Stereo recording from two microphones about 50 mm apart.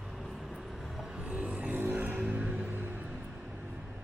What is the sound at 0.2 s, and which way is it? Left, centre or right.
Vehicle, centre.